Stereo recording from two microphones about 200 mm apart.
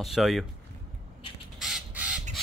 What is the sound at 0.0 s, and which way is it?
Speech, centre (ahead or behind).